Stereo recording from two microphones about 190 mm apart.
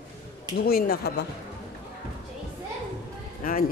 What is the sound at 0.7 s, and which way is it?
Speech, 55° left (ahead or behind).